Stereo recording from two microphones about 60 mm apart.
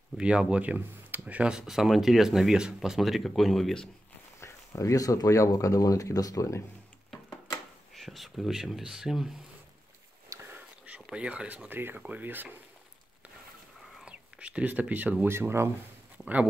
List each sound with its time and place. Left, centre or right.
0.2 s speech: centre
1.5 s speech: centre
4.4 s speech: left
7.9 s speech: centre
10.3 s a sound: right
11.1 s speech: centre
14.0 s whispering: centre
15.2 s speech: right